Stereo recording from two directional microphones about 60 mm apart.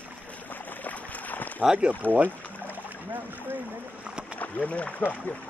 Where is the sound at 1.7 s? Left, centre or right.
Centre.